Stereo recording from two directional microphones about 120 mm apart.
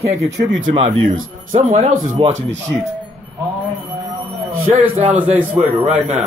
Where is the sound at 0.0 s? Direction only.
25° right (ahead or behind).